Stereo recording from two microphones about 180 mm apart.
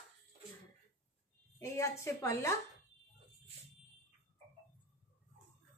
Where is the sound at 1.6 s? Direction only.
15° left (ahead or behind).